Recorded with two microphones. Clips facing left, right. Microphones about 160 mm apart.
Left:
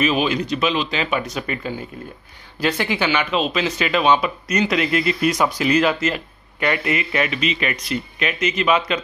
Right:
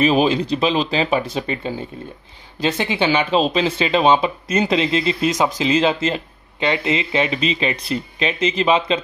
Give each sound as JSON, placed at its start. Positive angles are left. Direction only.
{"t": 0.0, "sound": "speech", "side_deg": -35}